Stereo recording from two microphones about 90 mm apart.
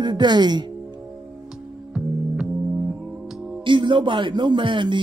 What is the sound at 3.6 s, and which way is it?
Speech, 65° right (ahead or behind).